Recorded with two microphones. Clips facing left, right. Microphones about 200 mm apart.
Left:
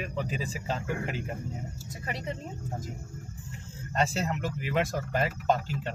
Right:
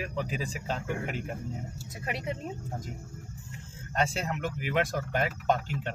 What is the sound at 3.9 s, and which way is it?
Speech, 5° left (ahead or behind).